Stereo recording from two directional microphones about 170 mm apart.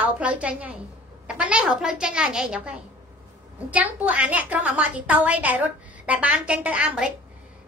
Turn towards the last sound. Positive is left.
turn(degrees=-5)  # may be behind; listen again after turning